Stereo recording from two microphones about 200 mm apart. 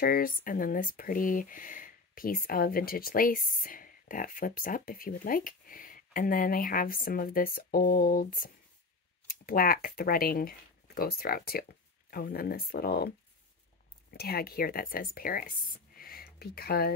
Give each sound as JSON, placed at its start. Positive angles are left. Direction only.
{"t": 0.0, "sound": "speech", "side_deg": 45}
{"t": 14.1, "sound": "speech", "side_deg": 50}